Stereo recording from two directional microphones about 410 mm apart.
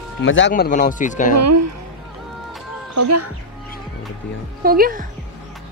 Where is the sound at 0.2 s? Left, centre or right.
Left.